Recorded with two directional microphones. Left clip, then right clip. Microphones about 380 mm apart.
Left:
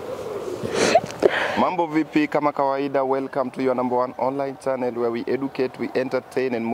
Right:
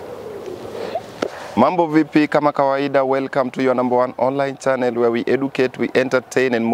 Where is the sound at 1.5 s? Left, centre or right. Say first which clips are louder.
Right 6 dB; right.